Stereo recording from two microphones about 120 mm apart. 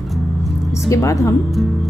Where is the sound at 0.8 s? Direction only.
25° left (ahead or behind).